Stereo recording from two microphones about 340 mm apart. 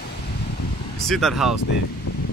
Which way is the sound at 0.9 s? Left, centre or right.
Centre.